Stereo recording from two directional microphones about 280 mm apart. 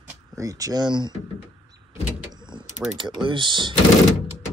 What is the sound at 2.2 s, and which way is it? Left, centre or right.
Power windows, centre.